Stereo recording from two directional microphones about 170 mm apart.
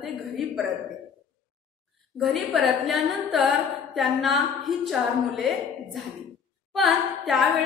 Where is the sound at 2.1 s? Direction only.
Centre (ahead or behind).